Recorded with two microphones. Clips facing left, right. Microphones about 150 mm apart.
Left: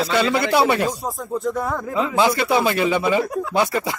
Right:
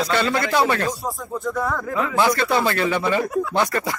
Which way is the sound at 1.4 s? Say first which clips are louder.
Right 1 dB; 25° left (ahead or behind).